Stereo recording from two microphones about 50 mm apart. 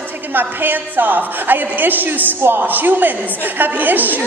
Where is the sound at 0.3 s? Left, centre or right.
Right.